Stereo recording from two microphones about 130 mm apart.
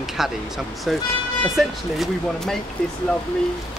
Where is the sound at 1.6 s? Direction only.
Centre (ahead or behind).